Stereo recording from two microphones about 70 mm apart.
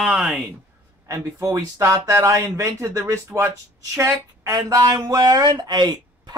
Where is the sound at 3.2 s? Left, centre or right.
Right.